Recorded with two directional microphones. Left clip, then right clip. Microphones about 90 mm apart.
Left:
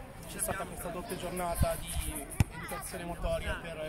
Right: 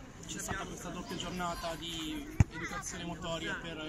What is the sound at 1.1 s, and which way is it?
Speech, 50° left (ahead or behind).